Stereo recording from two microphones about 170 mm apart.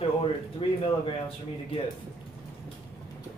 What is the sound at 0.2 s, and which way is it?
Speech, 30° left (ahead or behind).